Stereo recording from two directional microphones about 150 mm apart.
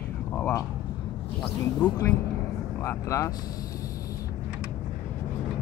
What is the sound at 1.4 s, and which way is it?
Speech, 10° left (ahead or behind).